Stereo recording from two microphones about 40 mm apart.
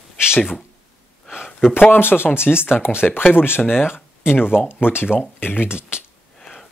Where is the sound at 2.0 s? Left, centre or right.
Left.